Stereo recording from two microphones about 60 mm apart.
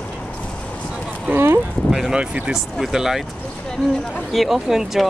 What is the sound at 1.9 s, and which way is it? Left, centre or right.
Speech, centre.